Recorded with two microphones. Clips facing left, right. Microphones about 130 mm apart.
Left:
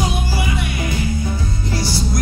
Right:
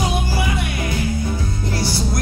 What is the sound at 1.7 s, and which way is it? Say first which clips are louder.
Music: left 1 dB; 55° right (ahead or behind).